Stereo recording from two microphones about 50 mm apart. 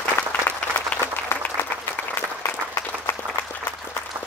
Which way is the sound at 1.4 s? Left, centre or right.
Left.